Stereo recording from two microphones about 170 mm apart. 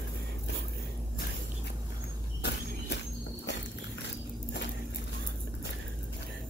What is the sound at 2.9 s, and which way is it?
Walk, 90° left.